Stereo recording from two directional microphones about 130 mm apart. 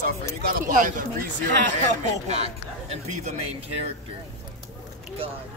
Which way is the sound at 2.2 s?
55° right (ahead or behind).